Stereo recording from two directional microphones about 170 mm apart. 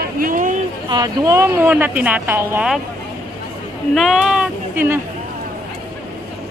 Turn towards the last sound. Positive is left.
turn(degrees=-10)  # may be behind; listen again after turning